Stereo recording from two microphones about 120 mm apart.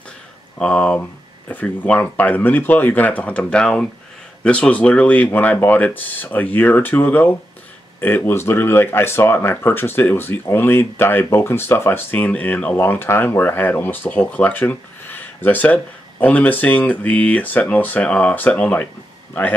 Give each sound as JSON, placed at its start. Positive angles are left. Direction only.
{"t": 0.6, "sound": "speech", "side_deg": 10}